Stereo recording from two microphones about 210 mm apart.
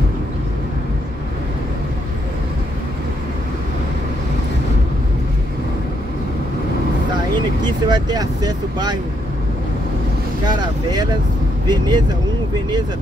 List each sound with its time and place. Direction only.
7.6 s speech: 20° right (ahead or behind)
10.4 s speech: 20° right (ahead or behind)